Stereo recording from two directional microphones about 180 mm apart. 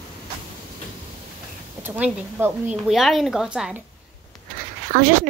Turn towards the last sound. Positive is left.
turn(degrees=-50)  # may be behind; listen again after turning